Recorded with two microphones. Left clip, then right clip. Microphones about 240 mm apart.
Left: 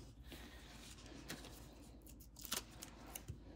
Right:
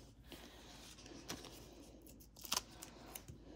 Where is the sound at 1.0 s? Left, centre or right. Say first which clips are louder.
Right 3 dB; right.